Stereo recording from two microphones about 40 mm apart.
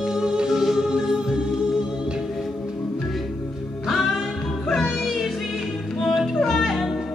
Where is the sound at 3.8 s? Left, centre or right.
Centre.